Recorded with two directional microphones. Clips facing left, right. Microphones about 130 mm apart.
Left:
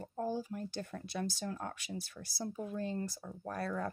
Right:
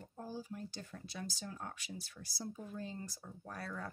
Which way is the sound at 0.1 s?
65° left (ahead or behind).